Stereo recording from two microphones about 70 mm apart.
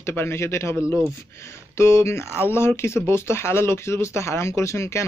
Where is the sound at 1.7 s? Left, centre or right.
Left.